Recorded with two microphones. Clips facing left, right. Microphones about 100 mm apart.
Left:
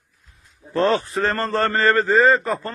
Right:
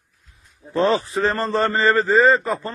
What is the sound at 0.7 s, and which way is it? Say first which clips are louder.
A man's voice: even; centre (ahead or behind).